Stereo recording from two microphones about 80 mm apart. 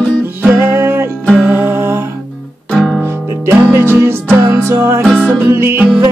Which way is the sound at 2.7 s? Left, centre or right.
Centre.